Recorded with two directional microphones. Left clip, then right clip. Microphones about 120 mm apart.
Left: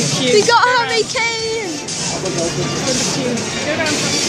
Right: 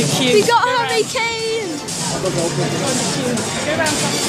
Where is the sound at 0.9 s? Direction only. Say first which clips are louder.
Left 1 dB; 15° right (ahead or behind).